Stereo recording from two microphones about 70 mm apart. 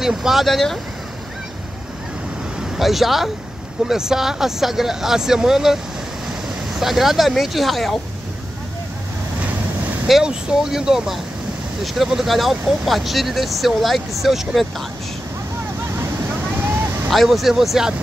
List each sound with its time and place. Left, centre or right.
0.0 s speech: centre
2.6 s speech: centre
9.4 s vehicle: right
10.0 s speech: centre
16.5 s vehicle: right
17.1 s speech: centre